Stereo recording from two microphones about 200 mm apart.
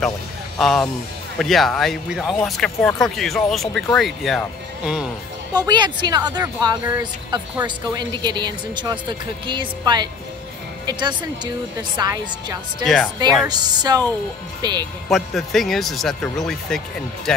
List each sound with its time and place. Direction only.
0.6 s speech: centre (ahead or behind)
5.7 s speech: 20° right (ahead or behind)
12.8 s speech: centre (ahead or behind)
13.5 s speech: 20° right (ahead or behind)
15.0 s speech: centre (ahead or behind)